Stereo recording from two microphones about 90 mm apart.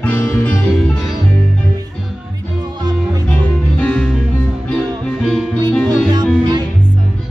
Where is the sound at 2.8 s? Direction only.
50° right (ahead or behind).